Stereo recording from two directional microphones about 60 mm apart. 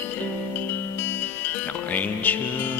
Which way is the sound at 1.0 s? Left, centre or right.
Left.